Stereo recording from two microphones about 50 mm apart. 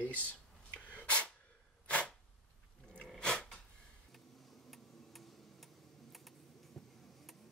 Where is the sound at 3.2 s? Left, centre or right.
Centre.